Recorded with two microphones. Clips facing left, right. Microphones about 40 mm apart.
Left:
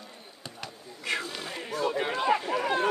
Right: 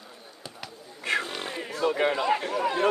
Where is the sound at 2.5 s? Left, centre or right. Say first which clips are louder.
Right 1 dB; centre.